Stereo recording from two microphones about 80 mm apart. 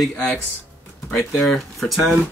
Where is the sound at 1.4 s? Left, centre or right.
Centre.